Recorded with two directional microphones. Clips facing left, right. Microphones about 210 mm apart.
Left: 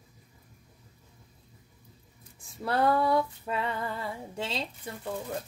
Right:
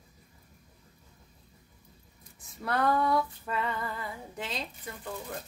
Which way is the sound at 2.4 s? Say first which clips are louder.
Left 2 dB; 30° left (ahead or behind).